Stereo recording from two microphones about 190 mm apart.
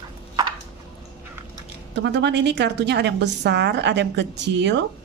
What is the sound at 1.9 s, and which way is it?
A woman's voice, 65° right (ahead or behind).